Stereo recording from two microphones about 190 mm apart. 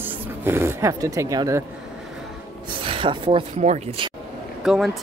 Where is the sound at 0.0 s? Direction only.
10° right (ahead or behind).